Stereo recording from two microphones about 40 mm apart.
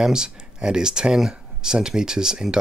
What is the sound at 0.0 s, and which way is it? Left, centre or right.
Speech, centre.